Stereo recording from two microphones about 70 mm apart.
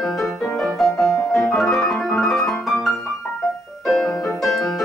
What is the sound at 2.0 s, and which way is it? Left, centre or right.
Piano, centre.